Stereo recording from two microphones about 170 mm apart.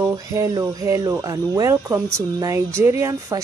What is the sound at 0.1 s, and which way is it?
Music, 20° right (ahead or behind).